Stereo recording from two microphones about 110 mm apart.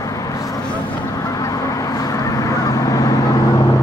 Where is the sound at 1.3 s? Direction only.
30° left (ahead or behind).